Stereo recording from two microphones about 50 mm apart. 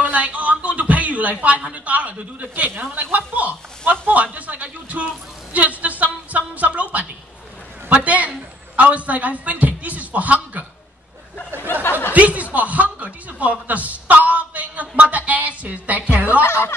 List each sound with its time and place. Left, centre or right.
0.0 s a woman's voice: right
11.8 s a sound: left
12.1 s a man's voice: right
16.4 s speech: left